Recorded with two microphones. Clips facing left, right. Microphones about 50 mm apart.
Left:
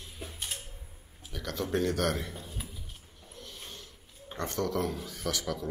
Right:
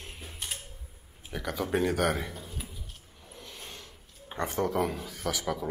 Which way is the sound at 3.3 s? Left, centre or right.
Right.